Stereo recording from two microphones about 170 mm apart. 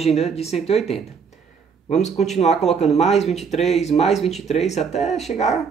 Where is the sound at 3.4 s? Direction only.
40° left (ahead or behind).